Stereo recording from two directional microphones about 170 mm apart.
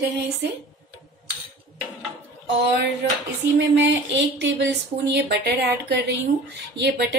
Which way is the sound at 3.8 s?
90° right.